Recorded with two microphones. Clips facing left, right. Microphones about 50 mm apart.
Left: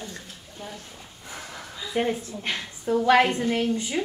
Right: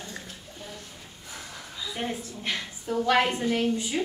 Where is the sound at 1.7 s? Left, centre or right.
Left.